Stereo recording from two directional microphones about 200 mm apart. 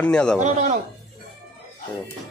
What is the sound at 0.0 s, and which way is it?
Speech, 5° left (ahead or behind).